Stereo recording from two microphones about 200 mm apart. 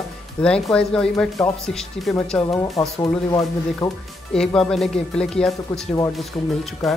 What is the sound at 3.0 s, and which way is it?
Speech, 15° left (ahead or behind).